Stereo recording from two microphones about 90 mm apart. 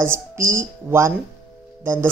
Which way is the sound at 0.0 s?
30° right (ahead or behind).